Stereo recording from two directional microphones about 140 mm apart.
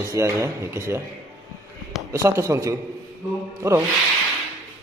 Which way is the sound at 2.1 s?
20° right (ahead or behind).